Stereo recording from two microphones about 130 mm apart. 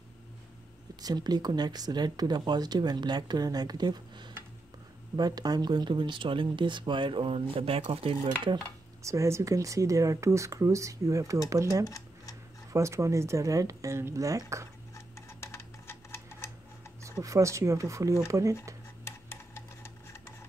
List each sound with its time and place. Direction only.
1.0 s speech: 30° right (ahead or behind)
9.0 s speech: 25° right (ahead or behind)
11.8 s tick-tock: 25° left (ahead or behind)
12.7 s speech: 20° right (ahead or behind)
15.0 s typewriter: 20° left (ahead or behind)
17.2 s speech: 25° right (ahead or behind)
19.0 s tick-tock: 20° left (ahead or behind)